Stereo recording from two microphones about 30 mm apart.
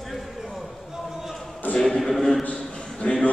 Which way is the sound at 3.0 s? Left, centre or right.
Left.